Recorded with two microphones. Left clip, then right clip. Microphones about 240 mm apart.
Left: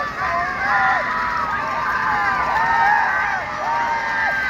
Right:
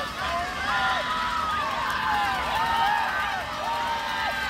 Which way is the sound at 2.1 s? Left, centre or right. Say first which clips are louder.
Left 6 dB; right.